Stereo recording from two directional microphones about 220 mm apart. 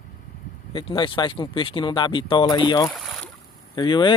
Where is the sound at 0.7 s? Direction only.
25° left (ahead or behind).